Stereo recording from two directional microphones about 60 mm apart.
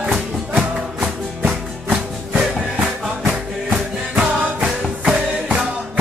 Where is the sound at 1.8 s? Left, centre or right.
Right.